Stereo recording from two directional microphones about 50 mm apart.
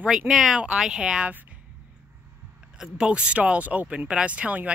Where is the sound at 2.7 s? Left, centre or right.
Centre.